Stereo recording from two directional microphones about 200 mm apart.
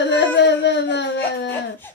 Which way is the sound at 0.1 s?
60° left (ahead or behind).